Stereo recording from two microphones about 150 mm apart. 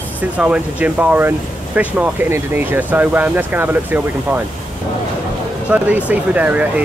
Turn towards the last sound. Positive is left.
turn(degrees=-10)  # may be behind; listen again after turning